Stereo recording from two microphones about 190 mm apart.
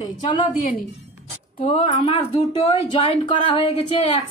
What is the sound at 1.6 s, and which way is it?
A woman's voice, 30° left (ahead or behind).